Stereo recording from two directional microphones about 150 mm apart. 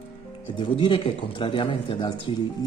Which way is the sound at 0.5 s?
35° left (ahead or behind).